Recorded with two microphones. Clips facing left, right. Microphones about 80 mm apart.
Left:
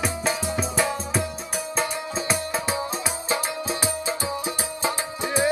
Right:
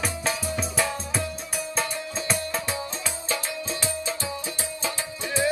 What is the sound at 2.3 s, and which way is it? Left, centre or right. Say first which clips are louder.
Music: left 2 dB; centre.